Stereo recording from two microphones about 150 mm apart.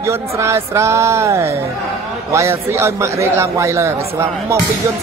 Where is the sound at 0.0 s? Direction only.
20° right (ahead or behind).